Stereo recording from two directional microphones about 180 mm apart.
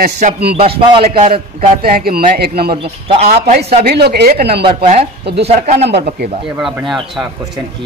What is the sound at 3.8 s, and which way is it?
Speech, 65° right (ahead or behind).